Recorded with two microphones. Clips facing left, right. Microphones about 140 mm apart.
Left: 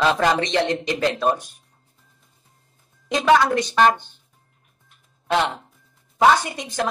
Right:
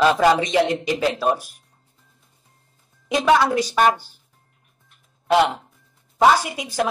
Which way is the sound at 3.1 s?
5° right (ahead or behind).